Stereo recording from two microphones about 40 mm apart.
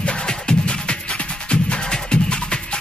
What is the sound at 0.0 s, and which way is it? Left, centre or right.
Music, left.